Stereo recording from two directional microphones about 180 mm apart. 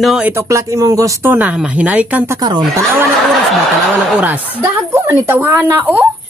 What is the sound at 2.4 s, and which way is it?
Speech, 20° right (ahead or behind).